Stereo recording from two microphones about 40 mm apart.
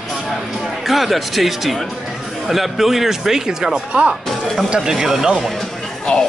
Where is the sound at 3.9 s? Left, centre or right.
Right.